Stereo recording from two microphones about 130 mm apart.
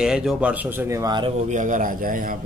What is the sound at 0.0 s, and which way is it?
Speech, 5° right (ahead or behind).